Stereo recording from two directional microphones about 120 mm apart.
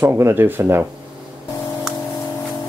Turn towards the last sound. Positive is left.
turn(degrees=-20)  # may be behind; listen again after turning